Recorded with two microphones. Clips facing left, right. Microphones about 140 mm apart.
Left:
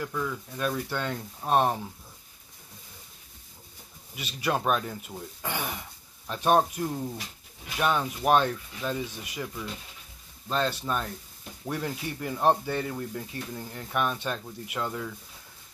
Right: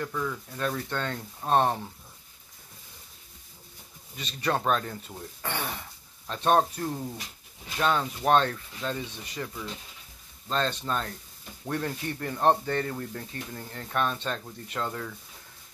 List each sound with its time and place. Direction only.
0.0 s speech: centre (ahead or behind)
4.1 s speech: 10° left (ahead or behind)